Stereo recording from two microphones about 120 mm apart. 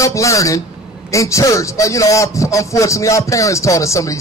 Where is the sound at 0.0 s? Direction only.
25° left (ahead or behind).